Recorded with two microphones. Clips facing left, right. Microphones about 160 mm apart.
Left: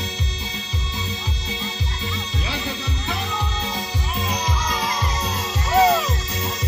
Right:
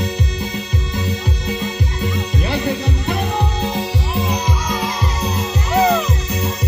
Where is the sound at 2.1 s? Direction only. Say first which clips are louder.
Right 8 dB; 60° right (ahead or behind).